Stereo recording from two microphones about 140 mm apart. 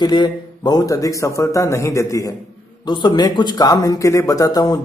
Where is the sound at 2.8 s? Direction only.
35° left (ahead or behind).